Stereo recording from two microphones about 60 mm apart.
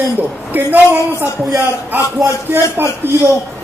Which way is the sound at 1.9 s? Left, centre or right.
Right.